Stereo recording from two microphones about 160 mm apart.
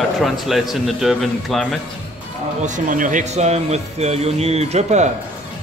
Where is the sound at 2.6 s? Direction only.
55° right (ahead or behind).